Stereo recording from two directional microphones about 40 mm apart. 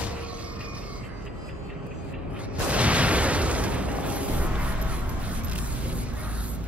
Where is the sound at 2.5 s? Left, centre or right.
Right.